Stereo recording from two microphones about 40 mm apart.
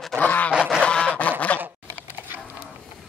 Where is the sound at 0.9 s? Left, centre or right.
Left.